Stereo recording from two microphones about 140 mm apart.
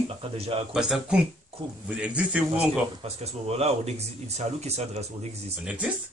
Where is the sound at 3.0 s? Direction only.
45° right (ahead or behind).